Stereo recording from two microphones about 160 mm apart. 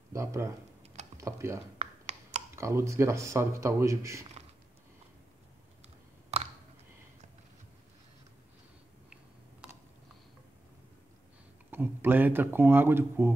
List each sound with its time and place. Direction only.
0.1 s speech: 20° right (ahead or behind)
1.8 s a sound: 45° right (ahead or behind)
2.5 s a man's voice: 20° right (ahead or behind)
6.3 s clicking: 45° right (ahead or behind)
11.7 s speech: 15° right (ahead or behind)